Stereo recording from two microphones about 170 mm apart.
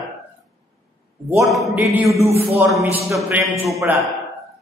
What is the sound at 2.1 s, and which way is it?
Speech, 35° right (ahead or behind).